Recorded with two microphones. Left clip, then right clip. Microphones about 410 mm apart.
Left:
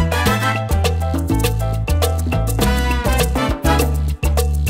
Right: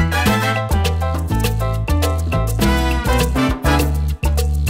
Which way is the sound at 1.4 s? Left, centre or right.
Left.